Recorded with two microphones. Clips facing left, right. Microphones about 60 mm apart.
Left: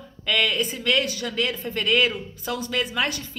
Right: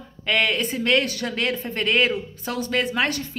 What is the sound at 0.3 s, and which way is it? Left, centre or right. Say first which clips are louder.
Speech: right 1 dB; right.